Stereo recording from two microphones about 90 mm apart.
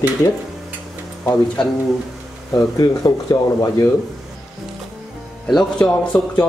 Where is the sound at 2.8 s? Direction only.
45° left (ahead or behind).